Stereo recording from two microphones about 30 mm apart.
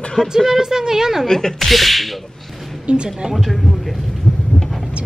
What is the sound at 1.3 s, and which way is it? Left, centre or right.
Speech, centre.